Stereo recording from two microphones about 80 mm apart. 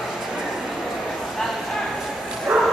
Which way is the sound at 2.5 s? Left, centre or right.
Centre.